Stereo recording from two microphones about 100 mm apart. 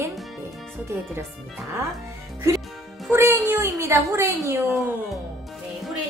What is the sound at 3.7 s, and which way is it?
Speech, 30° right (ahead or behind).